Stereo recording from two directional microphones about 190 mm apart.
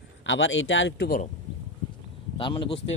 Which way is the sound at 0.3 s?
85° left.